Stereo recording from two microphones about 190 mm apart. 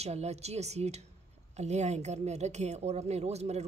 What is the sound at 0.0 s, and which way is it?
A woman's voice, 35° right (ahead or behind).